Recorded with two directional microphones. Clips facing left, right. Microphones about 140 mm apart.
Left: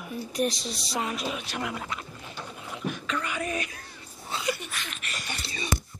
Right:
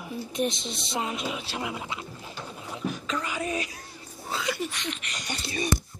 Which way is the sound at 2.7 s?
35° right (ahead or behind).